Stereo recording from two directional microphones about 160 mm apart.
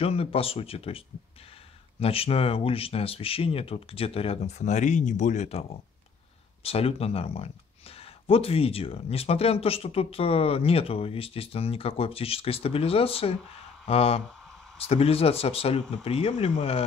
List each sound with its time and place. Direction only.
0.0 s speech: 35° left (ahead or behind)